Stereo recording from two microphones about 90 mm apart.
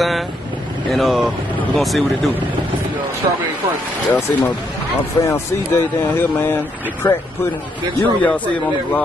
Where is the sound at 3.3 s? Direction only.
60° right (ahead or behind).